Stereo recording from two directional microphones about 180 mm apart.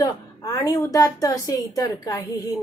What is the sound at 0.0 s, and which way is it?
A woman's voice, 20° left (ahead or behind).